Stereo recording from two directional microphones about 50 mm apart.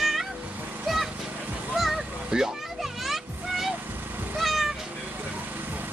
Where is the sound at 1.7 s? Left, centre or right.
Centre.